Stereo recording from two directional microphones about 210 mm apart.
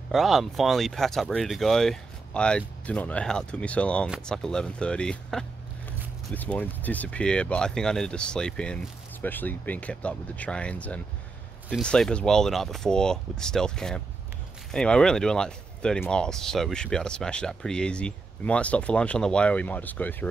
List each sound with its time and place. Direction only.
0.1 s speech: centre (ahead or behind)